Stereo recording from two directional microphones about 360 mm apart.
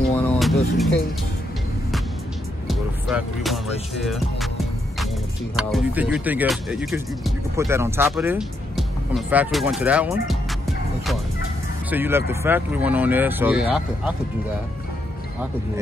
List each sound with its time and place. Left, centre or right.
0.1 s music: centre
2.7 s speech: centre
5.6 s speech: centre
11.9 s speech: centre